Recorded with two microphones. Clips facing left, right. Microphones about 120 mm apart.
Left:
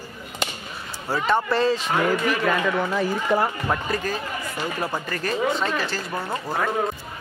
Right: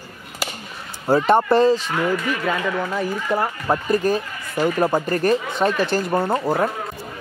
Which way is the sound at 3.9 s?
45° right (ahead or behind).